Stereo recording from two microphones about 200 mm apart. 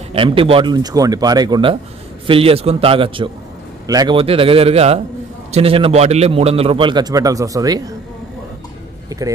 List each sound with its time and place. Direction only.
0.1 s a man's voice: 25° right (ahead or behind)
9.1 s speech: 15° right (ahead or behind)